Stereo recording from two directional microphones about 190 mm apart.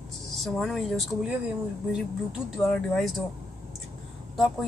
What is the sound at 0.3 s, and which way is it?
Speech, centre (ahead or behind).